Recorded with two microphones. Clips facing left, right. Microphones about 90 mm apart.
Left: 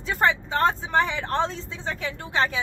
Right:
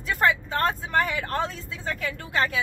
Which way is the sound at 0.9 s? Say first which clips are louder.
Left 2 dB; 5° right (ahead or behind).